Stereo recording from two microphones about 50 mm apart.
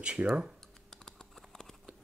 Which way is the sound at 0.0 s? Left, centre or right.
Right.